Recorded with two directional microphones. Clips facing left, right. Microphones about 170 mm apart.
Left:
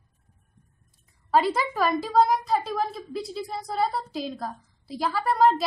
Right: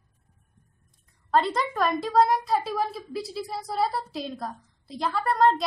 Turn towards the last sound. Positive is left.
turn(degrees=0)  # may be behind; listen again after turning